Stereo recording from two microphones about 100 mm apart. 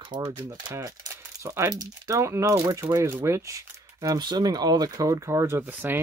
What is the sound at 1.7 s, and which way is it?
Speech, 40° right (ahead or behind).